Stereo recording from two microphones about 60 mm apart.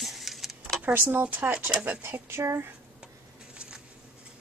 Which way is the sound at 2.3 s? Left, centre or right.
Right.